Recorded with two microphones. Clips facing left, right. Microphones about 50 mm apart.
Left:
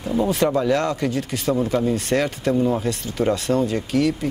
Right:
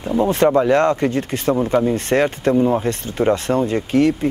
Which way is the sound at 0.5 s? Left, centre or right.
Right.